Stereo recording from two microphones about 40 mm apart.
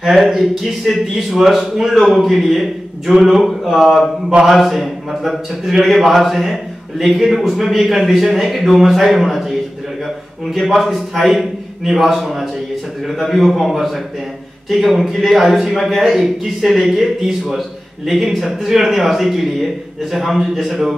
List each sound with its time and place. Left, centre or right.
0.0 s speech: centre
3.8 s mantra: centre
4.5 s speech: centre